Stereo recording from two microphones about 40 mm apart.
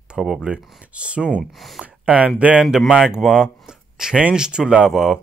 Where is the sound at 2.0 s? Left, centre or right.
Right.